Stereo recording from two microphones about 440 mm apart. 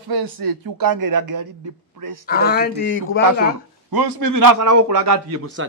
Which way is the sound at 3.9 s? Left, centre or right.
Right.